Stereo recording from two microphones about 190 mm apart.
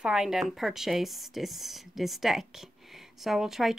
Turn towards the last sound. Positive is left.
turn(degrees=0)  # may be behind; listen again after turning